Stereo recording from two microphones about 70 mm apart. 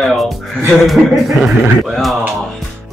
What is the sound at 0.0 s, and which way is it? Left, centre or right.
Music, centre.